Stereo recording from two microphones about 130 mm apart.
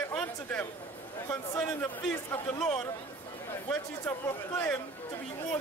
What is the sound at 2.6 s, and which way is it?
Speech, 5° left (ahead or behind).